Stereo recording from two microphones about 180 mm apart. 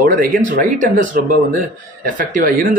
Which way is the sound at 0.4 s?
45° right (ahead or behind).